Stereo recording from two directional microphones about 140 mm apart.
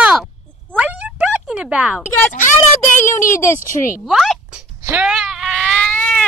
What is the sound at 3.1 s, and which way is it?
Speech, 20° left (ahead or behind).